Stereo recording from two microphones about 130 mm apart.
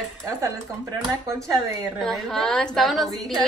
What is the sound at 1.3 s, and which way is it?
Speech, 25° right (ahead or behind).